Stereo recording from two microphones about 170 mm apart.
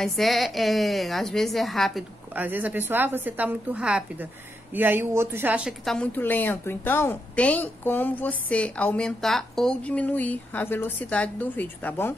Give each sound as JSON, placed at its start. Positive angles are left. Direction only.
{"t": 0.0, "sound": "a woman's voice", "side_deg": 0}
{"t": 2.3, "sound": "a woman's voice", "side_deg": -10}